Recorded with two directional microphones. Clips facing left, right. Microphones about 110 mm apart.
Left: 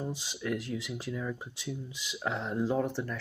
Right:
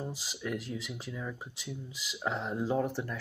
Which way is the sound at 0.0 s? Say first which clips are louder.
Left 2 dB; 5° right (ahead or behind).